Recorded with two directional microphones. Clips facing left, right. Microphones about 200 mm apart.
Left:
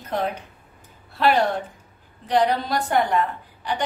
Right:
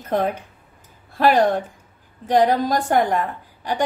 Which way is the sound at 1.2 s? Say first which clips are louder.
Right 3 dB; 45° right (ahead or behind).